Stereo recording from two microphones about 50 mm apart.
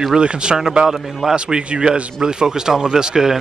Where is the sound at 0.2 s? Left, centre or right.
Centre.